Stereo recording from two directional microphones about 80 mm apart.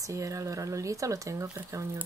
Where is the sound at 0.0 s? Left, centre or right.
Right.